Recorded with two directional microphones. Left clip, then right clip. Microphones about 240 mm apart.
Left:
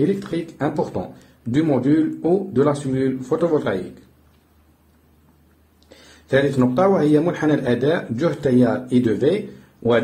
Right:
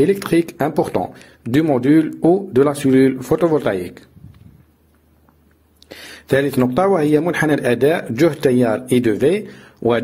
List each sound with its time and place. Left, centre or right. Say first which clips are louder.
0.2 s speech: right 7 dB; right
5.9 s speech: right 5 dB; right